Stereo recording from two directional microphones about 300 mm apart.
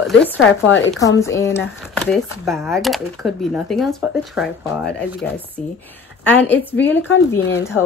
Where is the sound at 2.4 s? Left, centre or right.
Centre.